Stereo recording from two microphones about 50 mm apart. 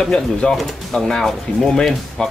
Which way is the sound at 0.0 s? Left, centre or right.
Centre.